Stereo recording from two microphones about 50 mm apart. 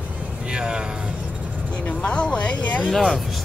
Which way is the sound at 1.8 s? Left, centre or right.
Left.